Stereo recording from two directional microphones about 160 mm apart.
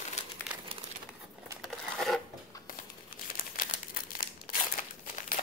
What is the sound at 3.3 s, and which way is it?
Crumpling, 65° left (ahead or behind).